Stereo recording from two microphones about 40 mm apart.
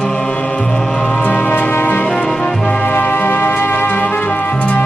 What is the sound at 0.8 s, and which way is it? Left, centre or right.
Music, left.